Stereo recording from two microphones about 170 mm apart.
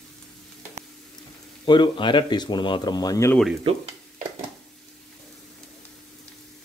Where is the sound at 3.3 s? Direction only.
Centre (ahead or behind).